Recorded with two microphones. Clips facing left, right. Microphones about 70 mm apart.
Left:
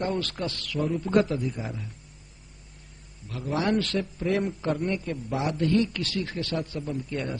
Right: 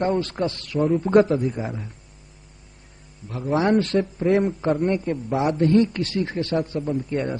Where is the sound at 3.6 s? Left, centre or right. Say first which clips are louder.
Right 6 dB; right.